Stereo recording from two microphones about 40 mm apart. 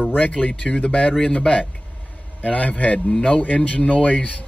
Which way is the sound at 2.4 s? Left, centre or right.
Left.